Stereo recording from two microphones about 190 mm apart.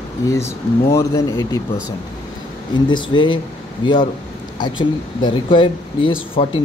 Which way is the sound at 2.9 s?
25° left (ahead or behind).